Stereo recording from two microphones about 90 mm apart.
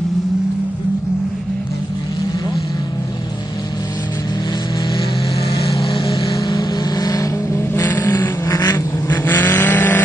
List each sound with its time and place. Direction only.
5.5 s vehicle: 40° left (ahead or behind)
5.8 s vehicle: 65° left (ahead or behind)
6.0 s vehicle: 45° left (ahead or behind)
7.5 s vehicle: 25° left (ahead or behind)
8.5 s vehicle: 45° left (ahead or behind)
9.2 s vehicle: 25° left (ahead or behind)